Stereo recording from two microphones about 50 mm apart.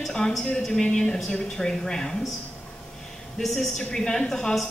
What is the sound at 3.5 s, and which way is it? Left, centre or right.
A woman's voice, centre.